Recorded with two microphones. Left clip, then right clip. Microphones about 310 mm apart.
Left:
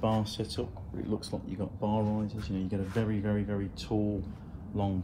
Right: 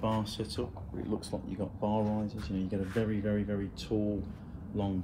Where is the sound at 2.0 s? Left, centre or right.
Left.